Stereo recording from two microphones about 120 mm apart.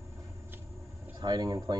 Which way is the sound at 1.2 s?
35° right (ahead or behind).